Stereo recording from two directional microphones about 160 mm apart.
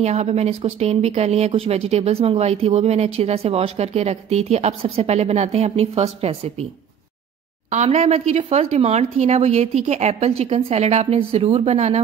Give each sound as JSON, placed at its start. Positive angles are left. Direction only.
{"t": 0.0, "sound": "speech", "side_deg": -40}
{"t": 7.7, "sound": "speech", "side_deg": -40}